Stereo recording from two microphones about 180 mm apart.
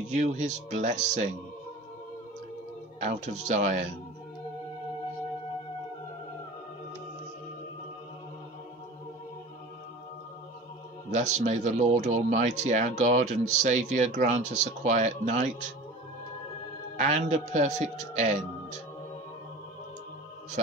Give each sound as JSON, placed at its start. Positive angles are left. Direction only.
{"t": 0.2, "sound": "speech", "side_deg": -45}
{"t": 3.4, "sound": "speech", "side_deg": -40}
{"t": 11.1, "sound": "speech", "side_deg": -45}
{"t": 16.9, "sound": "speech", "side_deg": -45}